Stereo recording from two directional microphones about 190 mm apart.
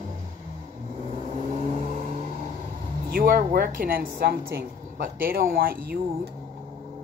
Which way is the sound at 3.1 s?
50° right (ahead or behind).